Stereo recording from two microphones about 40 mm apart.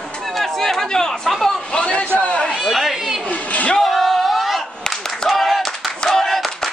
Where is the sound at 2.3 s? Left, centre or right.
Left.